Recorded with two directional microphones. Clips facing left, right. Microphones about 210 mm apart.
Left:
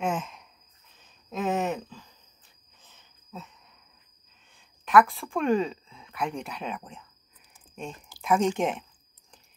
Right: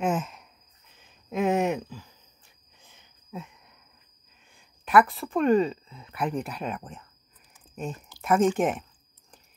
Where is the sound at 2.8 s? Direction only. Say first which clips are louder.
Right 1 dB; 10° right (ahead or behind).